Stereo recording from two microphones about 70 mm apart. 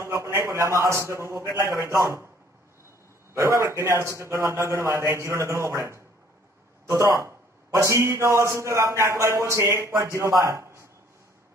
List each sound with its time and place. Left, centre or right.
0.0 s a man's voice: right
3.4 s a man's voice: right
10.4 s a sound: right